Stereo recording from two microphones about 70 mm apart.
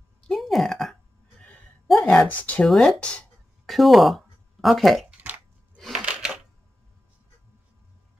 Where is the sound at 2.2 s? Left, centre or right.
Left.